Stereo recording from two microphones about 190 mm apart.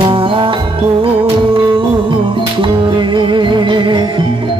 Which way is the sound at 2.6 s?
25° right (ahead or behind).